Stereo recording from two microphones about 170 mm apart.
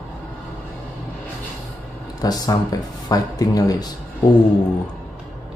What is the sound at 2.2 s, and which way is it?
Speech, 20° left (ahead or behind).